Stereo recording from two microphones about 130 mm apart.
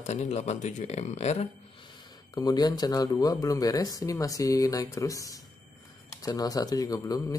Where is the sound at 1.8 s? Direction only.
30° left (ahead or behind).